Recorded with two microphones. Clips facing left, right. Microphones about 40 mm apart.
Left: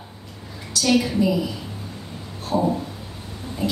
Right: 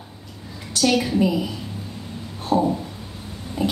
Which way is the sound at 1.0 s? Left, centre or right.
Right.